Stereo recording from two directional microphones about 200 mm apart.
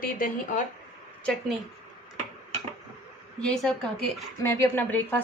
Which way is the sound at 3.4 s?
5° left (ahead or behind).